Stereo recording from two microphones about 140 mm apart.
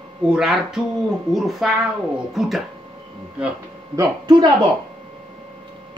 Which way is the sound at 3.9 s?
30° right (ahead or behind).